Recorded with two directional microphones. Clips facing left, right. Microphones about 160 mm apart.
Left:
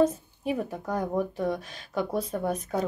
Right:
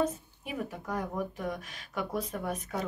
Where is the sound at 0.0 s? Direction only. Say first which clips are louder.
Left 7 dB; 35° left (ahead or behind).